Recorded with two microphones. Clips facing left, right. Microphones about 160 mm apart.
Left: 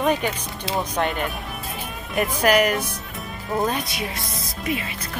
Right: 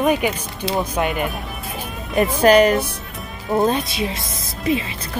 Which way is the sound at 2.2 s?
30° right (ahead or behind).